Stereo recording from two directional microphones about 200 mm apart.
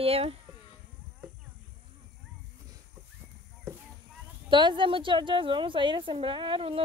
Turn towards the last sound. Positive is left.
turn(degrees=-25)  # may be behind; listen again after turning